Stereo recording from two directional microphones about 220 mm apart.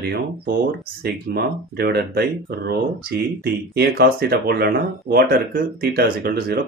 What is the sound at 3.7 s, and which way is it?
Speech, 45° right (ahead or behind).